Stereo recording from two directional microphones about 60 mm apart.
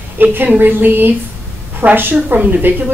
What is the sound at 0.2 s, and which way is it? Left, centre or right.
A woman's voice, right.